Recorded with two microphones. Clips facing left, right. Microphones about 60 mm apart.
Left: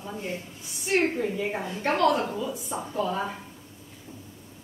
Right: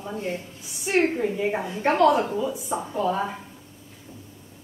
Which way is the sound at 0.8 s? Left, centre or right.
Centre.